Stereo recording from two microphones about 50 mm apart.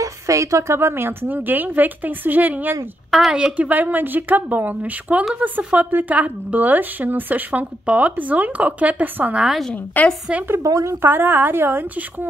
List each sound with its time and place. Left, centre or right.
0.3 s a woman's voice: right
0.7 s speech: right
3.3 s speech: centre; by 5.2 s right
5.4 s speech: right
5.8 s speech: right
9.9 s a woman's voice: left
10.5 s a woman's voice: right
11.0 s speech: right